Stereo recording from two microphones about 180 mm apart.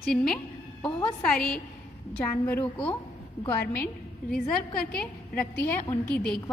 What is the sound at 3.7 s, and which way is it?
A woman's voice, 10° left (ahead or behind).